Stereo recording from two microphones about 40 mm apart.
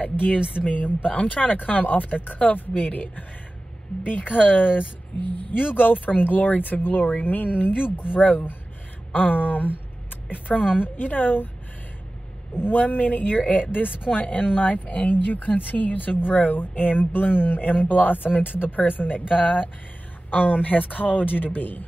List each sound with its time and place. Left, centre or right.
0.0 s speech: left
4.0 s speech: left
5.1 s speech: left
5.5 s speech: left
10.5 s a woman's voice: centre
11.0 s speech: left
12.5 s speech: left